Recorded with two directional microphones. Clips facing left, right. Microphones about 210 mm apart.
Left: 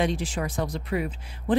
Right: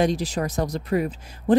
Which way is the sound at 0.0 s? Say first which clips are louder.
Right 4 dB; 40° right (ahead or behind).